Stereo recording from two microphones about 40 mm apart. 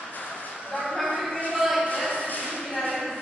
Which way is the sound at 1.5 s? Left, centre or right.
Centre.